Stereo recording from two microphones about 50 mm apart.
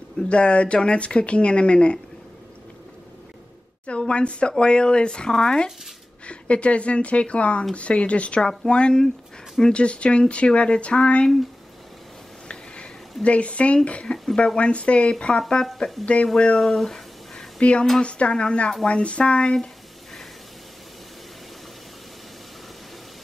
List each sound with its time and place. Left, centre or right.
0.3 s speech: left
3.8 s speech: left
12.4 s a sound: left
13.2 s speech: left
14.1 s speech: centre
14.6 s speech: left
16.6 s guitar: centre
17.6 s speech: left